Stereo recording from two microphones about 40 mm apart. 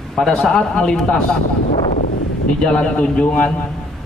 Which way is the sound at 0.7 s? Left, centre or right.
Centre.